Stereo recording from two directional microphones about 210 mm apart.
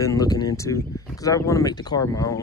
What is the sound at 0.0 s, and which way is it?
Speech, 15° left (ahead or behind).